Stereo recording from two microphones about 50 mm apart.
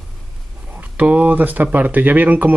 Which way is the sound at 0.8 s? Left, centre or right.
Right.